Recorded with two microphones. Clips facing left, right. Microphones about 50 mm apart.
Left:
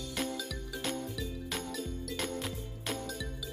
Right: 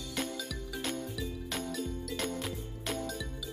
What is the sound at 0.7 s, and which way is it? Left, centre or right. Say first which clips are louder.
Music: even; centre.